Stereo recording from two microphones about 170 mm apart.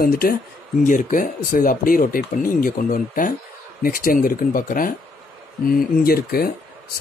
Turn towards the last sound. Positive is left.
turn(degrees=65)  # may be behind; listen again after turning